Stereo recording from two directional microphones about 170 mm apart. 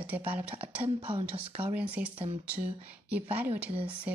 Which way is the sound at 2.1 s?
35° right (ahead or behind).